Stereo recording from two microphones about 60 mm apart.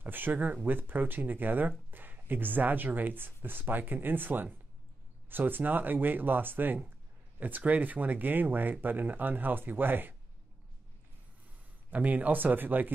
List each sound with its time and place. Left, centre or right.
0.0 s speech: right
11.9 s speech: right